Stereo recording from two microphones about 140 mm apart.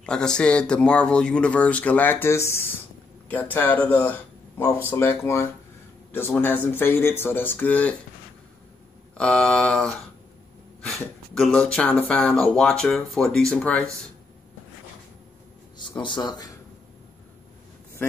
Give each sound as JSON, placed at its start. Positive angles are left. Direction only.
{"t": 0.0, "sound": "speech", "side_deg": 5}
{"t": 9.1, "sound": "speech", "side_deg": 10}
{"t": 16.0, "sound": "speech", "side_deg": 35}